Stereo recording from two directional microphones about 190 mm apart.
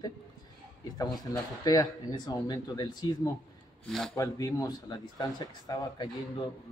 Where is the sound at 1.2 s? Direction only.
20° left (ahead or behind).